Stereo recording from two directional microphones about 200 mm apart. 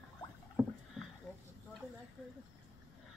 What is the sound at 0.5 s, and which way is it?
Rowboat, centre (ahead or behind).